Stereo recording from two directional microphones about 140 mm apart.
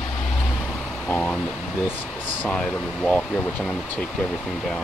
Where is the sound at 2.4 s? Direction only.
5° left (ahead or behind).